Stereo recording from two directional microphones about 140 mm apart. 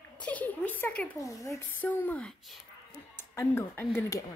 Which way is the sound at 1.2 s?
20° left (ahead or behind).